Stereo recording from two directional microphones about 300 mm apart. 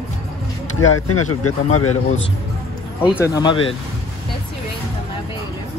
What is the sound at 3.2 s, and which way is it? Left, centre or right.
Speech, centre.